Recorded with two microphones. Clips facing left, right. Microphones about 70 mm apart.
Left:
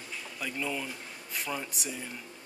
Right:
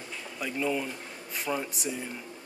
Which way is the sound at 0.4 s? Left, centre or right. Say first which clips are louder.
Right 5 dB; centre.